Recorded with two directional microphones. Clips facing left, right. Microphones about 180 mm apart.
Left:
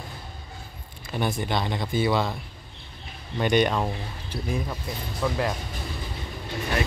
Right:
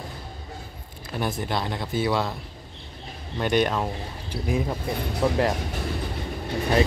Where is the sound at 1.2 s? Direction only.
5° right (ahead or behind).